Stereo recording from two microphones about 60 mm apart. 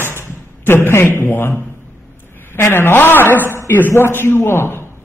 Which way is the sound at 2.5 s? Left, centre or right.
Left.